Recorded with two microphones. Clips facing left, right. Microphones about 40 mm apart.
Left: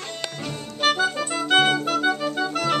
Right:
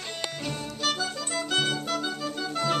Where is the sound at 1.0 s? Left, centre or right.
Left.